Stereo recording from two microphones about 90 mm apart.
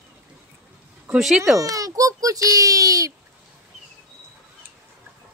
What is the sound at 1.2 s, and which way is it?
Speech, 5° right (ahead or behind).